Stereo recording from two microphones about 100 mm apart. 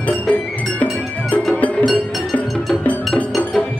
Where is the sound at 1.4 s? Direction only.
10° left (ahead or behind).